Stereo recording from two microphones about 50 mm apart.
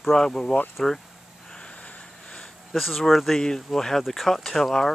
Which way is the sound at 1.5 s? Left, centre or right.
Left.